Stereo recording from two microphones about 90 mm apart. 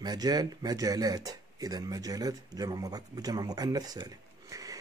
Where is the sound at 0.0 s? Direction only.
45° right (ahead or behind).